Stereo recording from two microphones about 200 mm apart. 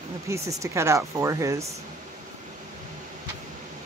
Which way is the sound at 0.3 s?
15° right (ahead or behind).